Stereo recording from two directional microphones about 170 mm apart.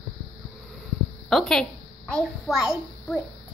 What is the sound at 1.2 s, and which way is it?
A woman's voice, 5° left (ahead or behind).